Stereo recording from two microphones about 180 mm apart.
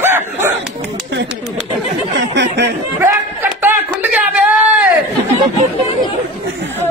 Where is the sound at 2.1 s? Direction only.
75° right (ahead or behind).